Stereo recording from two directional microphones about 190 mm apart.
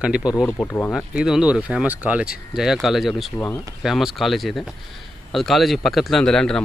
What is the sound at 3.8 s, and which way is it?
Speech, centre (ahead or behind).